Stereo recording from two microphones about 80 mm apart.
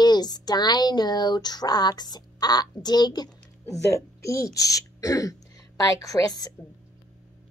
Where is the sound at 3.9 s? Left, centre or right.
Left.